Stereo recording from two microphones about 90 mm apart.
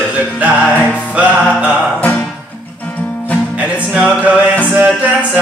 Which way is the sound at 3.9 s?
10° right (ahead or behind).